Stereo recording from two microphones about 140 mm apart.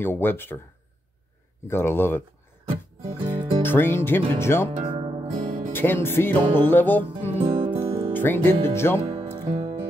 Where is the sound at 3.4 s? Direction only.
30° right (ahead or behind).